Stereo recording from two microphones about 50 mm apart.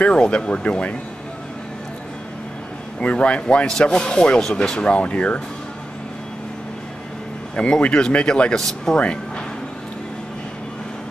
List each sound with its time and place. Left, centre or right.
0.1 s speech: centre
3.0 s speech: left
7.5 s speech: centre